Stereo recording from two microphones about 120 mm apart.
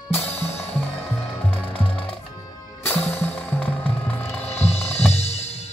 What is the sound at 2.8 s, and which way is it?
Music, 15° left (ahead or behind).